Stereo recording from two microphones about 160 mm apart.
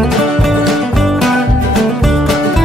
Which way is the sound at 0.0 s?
Centre (ahead or behind).